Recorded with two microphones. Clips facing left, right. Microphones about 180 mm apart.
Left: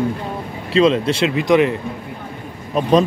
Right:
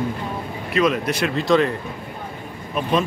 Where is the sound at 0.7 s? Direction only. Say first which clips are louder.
Left 5 dB; 30° left (ahead or behind).